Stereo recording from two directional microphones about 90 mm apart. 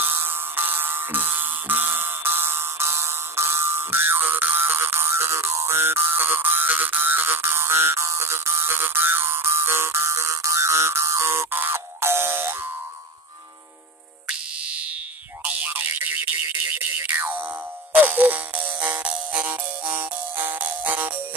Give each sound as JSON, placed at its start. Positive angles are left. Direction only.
{"t": 0.0, "sound": "music", "side_deg": -25}
{"t": 14.2, "sound": "a sound", "side_deg": -10}
{"t": 15.4, "sound": "music", "side_deg": -20}